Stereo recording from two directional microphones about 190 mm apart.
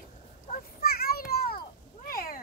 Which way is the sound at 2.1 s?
50° left (ahead or behind).